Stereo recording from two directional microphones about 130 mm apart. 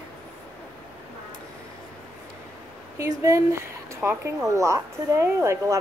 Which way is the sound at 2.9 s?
25° right (ahead or behind).